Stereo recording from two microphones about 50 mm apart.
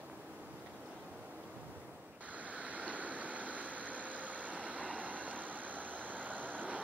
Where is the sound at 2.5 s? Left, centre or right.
Right.